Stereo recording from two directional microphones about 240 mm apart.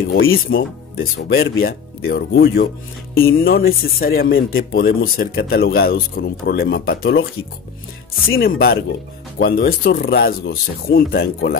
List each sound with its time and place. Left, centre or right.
0.2 s speech: left
0.9 s speech: left
8.4 s speech: left